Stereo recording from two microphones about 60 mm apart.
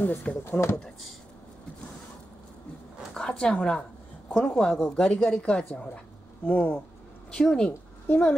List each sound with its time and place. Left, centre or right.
0.0 s speech: left
0.4 s speech: left
0.7 s speech: centre
3.2 s a woman's voice: centre